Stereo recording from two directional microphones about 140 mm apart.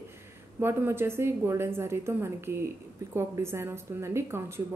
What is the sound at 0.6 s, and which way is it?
A woman's voice, 15° right (ahead or behind).